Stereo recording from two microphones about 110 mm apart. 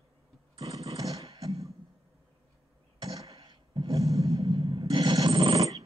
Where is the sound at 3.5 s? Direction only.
50° right (ahead or behind).